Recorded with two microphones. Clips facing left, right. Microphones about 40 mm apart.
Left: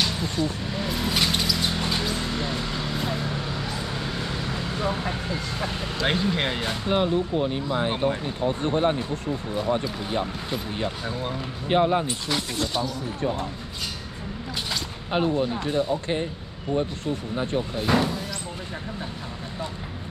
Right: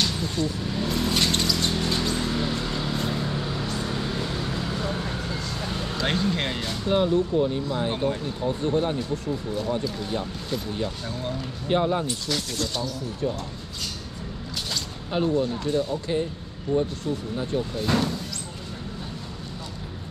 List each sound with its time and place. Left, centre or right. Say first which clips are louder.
0.0 s a sound: left 1 dB; centre
5.9 s speech: left 1 dB; centre
13.2 s speech: left 1 dB; left
14.7 s speech: left 2 dB; left
17.0 s speech: left 1 dB; left
17.8 s speech: left 3 dB; centre